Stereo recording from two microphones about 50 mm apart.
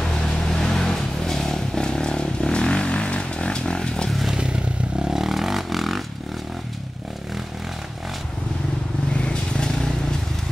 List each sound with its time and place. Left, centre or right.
0.5 s vehicle: centre
5.0 s vehicle: centre
9.1 s vehicle: left